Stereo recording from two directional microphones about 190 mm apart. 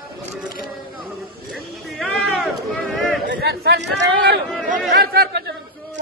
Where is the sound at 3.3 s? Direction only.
55° right (ahead or behind).